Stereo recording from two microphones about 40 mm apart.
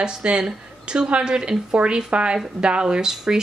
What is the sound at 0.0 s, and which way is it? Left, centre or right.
A woman's voice, right.